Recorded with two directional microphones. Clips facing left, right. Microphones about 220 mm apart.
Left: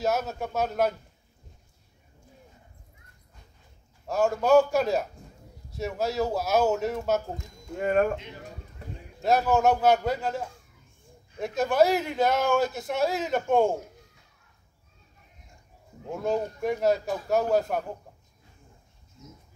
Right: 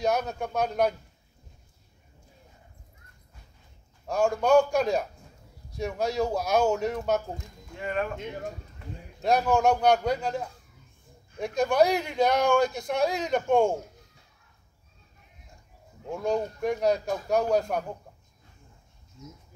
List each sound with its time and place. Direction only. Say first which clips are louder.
0.0 s speech: even; 5° left (ahead or behind)
4.1 s speech: left 1 dB; 5° left (ahead or behind)
7.7 s speech: left 7 dB; 45° left (ahead or behind)
9.2 s speech: left 1 dB; 5° left (ahead or behind)
16.1 s speech: even; 5° left (ahead or behind)